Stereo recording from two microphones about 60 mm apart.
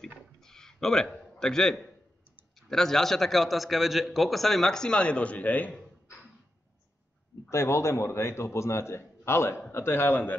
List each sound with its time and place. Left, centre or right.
0.0 s a sound: centre
2.7 s a man's voice: centre; by 5.8 s left
7.4 s a man's voice: left